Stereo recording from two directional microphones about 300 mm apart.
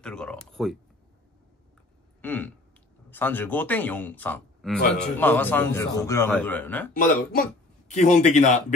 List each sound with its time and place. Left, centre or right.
0.0 s speech: centre
2.2 s a man's voice: centre
7.0 s speech: left